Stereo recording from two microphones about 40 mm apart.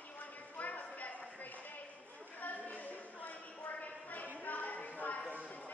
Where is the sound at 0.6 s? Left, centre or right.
Left.